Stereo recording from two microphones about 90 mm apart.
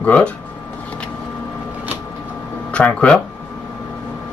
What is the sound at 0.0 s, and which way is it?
Speech, 15° left (ahead or behind).